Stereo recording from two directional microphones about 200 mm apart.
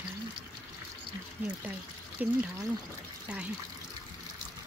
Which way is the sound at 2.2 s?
10° right (ahead or behind).